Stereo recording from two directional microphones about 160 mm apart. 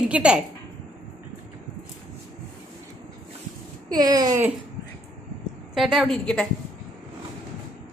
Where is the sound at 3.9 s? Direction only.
25° right (ahead or behind).